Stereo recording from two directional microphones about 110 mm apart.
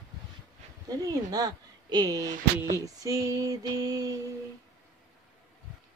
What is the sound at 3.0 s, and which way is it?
Female singing, 30° right (ahead or behind).